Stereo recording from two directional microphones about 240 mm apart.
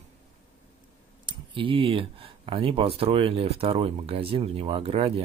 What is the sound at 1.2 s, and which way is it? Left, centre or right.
Speech, right.